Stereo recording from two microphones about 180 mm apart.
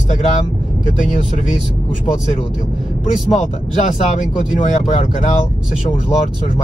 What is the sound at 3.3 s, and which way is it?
Speech, 40° left (ahead or behind).